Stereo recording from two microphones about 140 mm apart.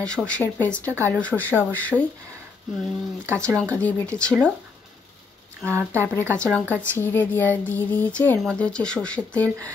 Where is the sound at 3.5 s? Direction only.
10° left (ahead or behind).